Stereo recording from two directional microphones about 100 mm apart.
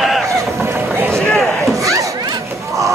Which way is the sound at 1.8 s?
35° right (ahead or behind).